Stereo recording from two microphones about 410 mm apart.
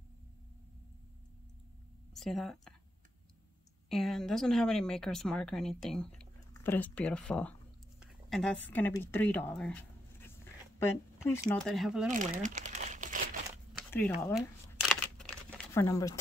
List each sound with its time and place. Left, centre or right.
2.1 s speech: centre
3.9 s speech: centre
8.0 s a sound: centre
8.7 s speech: centre
12.1 s crumpling: centre
13.7 s crumpling: centre